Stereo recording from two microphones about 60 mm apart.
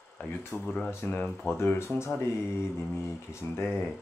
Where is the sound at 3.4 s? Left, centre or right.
Left.